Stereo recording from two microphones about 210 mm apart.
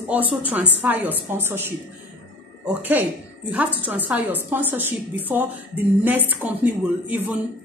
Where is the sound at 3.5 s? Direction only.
5° right (ahead or behind).